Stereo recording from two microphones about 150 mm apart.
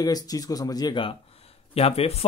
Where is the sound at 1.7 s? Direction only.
40° left (ahead or behind).